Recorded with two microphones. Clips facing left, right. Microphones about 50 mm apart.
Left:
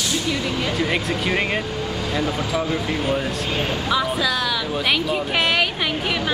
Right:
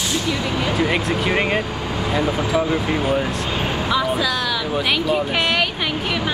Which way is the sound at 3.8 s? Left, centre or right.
Centre.